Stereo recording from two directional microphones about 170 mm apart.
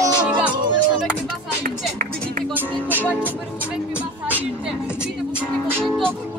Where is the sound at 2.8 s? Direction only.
10° left (ahead or behind).